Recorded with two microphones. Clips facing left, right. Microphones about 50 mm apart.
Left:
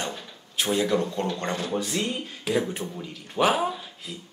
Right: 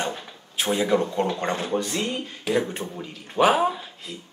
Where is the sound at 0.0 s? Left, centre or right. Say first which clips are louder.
Right 4 dB; centre.